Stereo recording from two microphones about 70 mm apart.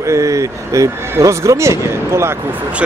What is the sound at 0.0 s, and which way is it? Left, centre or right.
Speech, right.